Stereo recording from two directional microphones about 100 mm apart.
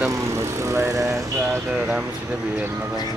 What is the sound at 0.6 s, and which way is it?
Speech, 25° right (ahead or behind).